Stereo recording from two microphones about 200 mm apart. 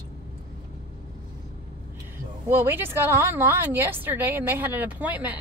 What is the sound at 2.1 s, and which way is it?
A woman's voice, 10° right (ahead or behind).